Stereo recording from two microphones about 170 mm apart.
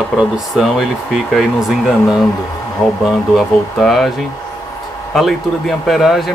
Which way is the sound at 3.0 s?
Centre (ahead or behind).